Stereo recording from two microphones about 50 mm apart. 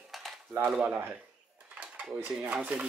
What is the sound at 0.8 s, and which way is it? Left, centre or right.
Speech, right.